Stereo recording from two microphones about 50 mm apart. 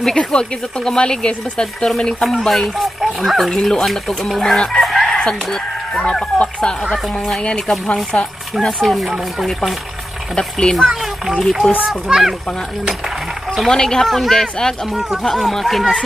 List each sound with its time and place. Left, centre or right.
0.0 s speech: centre
2.2 s speech: centre
4.8 s chicken: centre
5.1 s speech: centre
6.3 s speech: left
8.8 s speech: centre
10.3 s speech: centre
11.9 s speech: centre
13.7 s speech: centre
14.0 s speech: centre
14.3 s speech: centre
14.9 s speech: centre
15.2 s speech: centre